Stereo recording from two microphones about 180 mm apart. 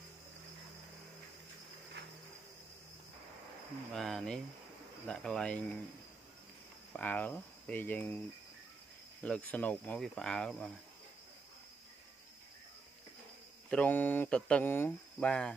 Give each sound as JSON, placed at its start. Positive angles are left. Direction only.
{"t": 3.9, "sound": "speech", "side_deg": 0}
{"t": 6.9, "sound": "speech", "side_deg": 10}
{"t": 9.2, "sound": "speech", "side_deg": 5}
{"t": 13.7, "sound": "speech", "side_deg": 10}